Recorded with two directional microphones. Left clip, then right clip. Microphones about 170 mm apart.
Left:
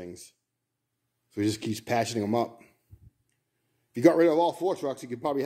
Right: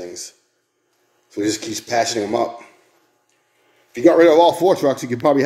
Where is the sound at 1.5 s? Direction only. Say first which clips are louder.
Right 8 dB; 25° left (ahead or behind).